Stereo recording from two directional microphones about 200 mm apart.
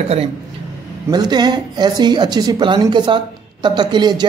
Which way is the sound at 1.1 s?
20° right (ahead or behind).